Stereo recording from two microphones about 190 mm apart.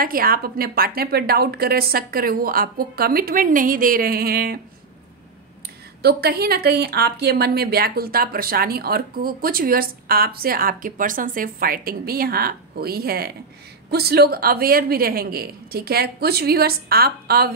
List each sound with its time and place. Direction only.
0.0 s speech: 50° right (ahead or behind)
6.0 s speech: 55° right (ahead or behind)